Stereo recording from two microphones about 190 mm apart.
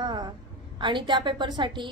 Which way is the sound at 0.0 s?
25° right (ahead or behind).